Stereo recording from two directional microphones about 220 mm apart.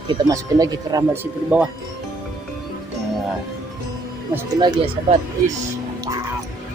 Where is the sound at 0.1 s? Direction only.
20° right (ahead or behind).